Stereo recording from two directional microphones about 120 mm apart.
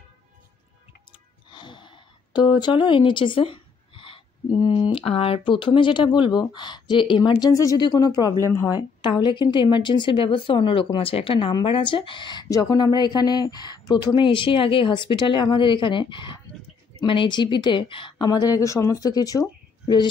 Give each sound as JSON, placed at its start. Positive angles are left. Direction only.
{"t": 1.5, "sound": "speech", "side_deg": 40}